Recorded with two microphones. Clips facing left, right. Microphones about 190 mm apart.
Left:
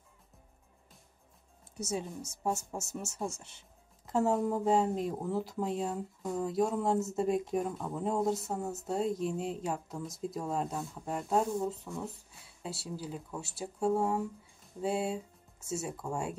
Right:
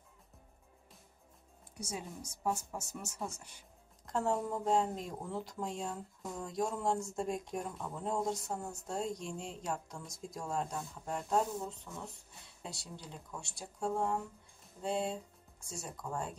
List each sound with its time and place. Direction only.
1.8 s speech: 25° left (ahead or behind)
4.0 s speech: 5° left (ahead or behind)